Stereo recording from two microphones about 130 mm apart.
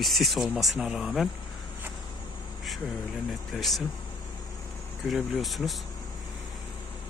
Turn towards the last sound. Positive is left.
turn(degrees=0)  # may be behind; listen again after turning